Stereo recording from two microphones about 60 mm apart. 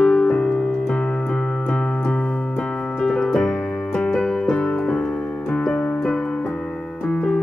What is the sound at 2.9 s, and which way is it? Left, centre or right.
Keyboard, centre.